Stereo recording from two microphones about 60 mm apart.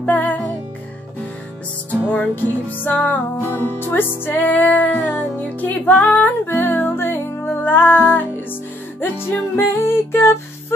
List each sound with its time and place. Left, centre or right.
0.0 s music: left
1.9 s music: left
3.4 s music: left